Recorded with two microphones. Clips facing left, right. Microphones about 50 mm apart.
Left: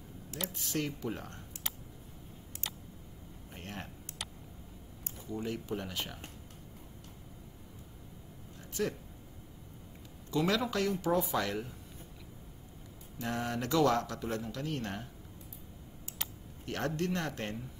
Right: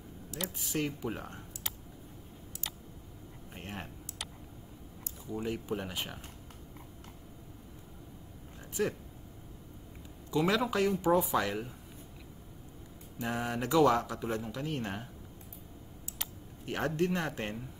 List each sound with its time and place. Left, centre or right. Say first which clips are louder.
0.5 s a man's voice: right 2 dB; centre
3.5 s a man's voice: right 1 dB; centre
5.3 s a man's voice: right 2 dB; centre
8.8 s a man's voice: right 2 dB; centre
10.3 s a man's voice: right 2 dB; centre
13.2 s a man's voice: right 1 dB; centre
16.6 s a man's voice: right 3 dB; centre